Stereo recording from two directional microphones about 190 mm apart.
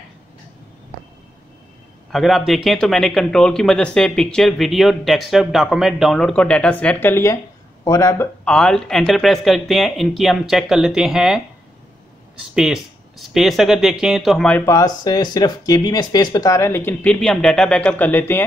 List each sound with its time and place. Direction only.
2.1 s speech: centre (ahead or behind)
12.5 s speech: centre (ahead or behind)
14.6 s speech: 15° left (ahead or behind)